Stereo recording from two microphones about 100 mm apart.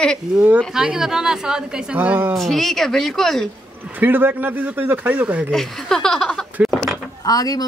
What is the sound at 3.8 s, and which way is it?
A woman's voice, 20° right (ahead or behind).